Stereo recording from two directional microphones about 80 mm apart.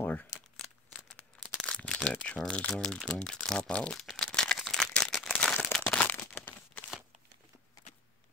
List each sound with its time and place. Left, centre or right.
0.0 s crumpling: left
1.6 s crumpling: centre
2.7 s speech: centre
4.2 s crumpling: centre